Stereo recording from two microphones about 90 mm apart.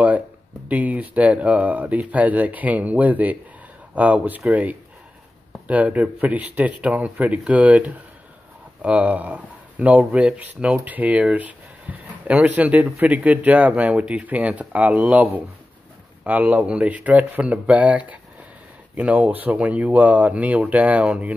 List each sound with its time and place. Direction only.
0.7 s speech: 15° right (ahead or behind)